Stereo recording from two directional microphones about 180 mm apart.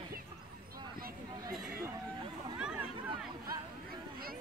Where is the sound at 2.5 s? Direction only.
5° right (ahead or behind).